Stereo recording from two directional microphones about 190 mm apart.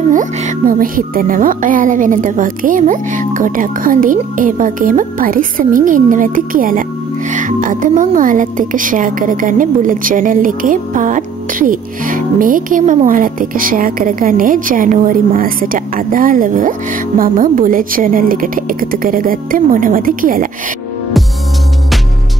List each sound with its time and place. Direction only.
0.1 s speech: 40° right (ahead or behind)